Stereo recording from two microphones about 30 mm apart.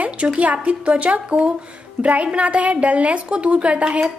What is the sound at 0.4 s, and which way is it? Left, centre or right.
A woman's voice, right.